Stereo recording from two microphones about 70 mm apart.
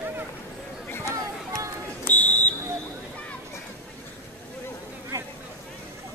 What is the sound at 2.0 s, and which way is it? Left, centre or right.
Fire alarm, left.